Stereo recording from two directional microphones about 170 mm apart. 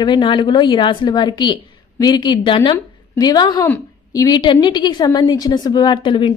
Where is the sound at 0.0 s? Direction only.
25° left (ahead or behind).